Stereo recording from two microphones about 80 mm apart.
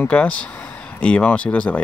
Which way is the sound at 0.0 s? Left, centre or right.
Centre.